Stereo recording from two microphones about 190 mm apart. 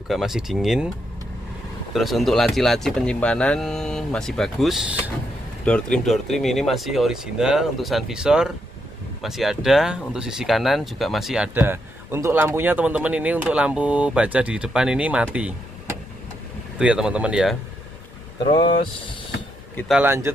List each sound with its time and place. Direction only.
0.1 s speech: centre (ahead or behind)
2.0 s speech: centre (ahead or behind)
16.7 s speech: 5° right (ahead or behind)
18.4 s speech: 25° left (ahead or behind)
19.9 s a man's voice: 10° right (ahead or behind)